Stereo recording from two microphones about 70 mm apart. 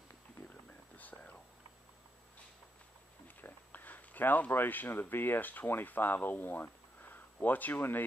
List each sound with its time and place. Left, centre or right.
0.9 s whispering: left
3.3 s speech: left